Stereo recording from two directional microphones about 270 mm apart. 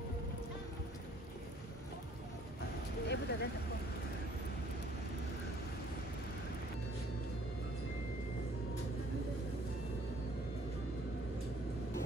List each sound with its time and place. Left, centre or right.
3.1 s vehicle: left